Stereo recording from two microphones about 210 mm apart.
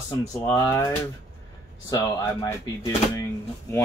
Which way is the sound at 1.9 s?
10° left (ahead or behind).